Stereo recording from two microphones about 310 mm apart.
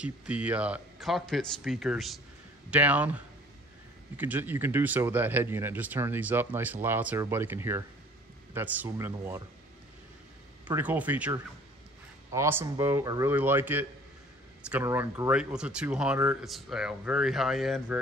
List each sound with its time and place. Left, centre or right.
0.0 s speech: centre
4.2 s speech: centre
10.7 s speech: centre